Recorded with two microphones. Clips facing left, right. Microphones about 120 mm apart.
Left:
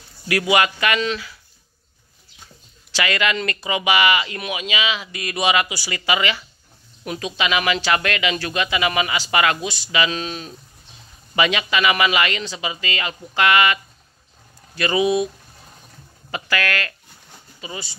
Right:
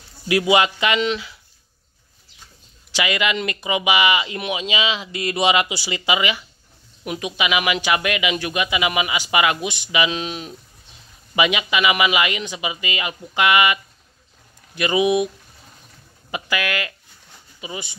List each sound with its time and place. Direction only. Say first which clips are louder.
0.3 s speech: right 2 dB; 20° right (ahead or behind)
2.9 s speech: even; 15° right (ahead or behind)
14.8 s speech: right 1 dB; 15° right (ahead or behind)
16.3 s speech: left 1 dB; 15° right (ahead or behind)